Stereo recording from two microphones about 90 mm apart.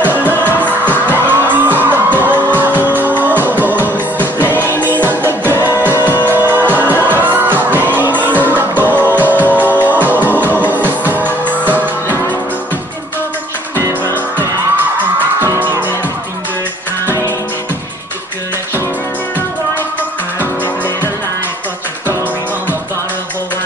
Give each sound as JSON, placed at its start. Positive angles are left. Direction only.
{"t": 0.0, "sound": "music", "side_deg": -20}
{"t": 11.4, "sound": "music", "side_deg": 15}
{"t": 11.7, "sound": "music", "side_deg": -20}
{"t": 15.1, "sound": "music", "side_deg": -25}
{"t": 20.3, "sound": "music", "side_deg": 20}